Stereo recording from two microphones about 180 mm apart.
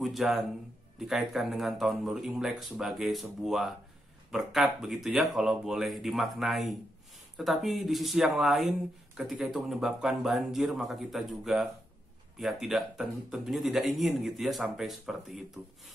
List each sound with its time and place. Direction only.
0.0 s speech: centre (ahead or behind)